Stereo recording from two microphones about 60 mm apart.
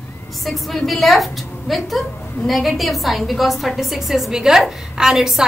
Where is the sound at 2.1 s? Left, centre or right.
Left.